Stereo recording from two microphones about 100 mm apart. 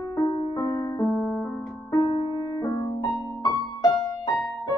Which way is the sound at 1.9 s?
40° left (ahead or behind).